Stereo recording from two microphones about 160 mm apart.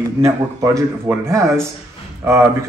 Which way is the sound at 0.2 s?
20° right (ahead or behind).